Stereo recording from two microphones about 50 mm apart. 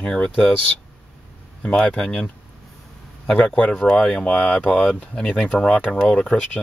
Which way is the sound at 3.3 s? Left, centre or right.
Left.